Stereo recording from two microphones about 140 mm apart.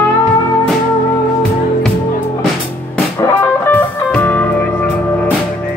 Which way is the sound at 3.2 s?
15° left (ahead or behind).